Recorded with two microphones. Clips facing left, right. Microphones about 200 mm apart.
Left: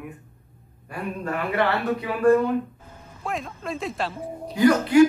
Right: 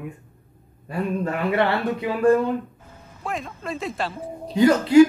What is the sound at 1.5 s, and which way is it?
Speech, 25° right (ahead or behind).